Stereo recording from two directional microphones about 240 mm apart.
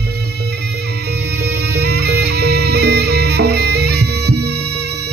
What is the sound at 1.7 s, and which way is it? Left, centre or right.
Music, right.